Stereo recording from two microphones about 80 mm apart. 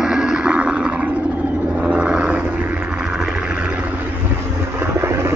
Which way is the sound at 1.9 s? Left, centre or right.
Centre.